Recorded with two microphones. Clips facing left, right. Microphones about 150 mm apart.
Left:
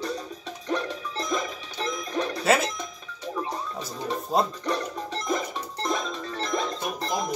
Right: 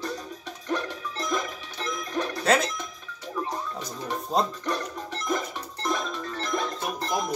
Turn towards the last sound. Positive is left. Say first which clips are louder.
# even
turn(degrees=20)  # may be behind; listen again after turning